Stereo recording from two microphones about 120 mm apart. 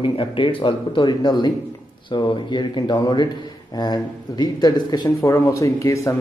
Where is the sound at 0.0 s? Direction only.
45° left (ahead or behind); by 6.1 s 25° left (ahead or behind).